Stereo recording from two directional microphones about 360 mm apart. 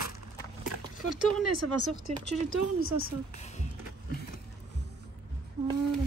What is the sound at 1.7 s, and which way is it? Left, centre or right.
Speech, left.